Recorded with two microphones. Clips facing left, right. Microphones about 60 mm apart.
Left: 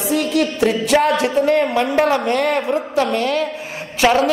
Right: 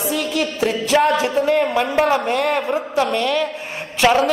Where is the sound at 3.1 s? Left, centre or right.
Right.